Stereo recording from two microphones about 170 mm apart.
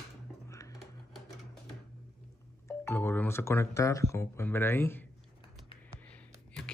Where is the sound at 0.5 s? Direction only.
20° left (ahead or behind).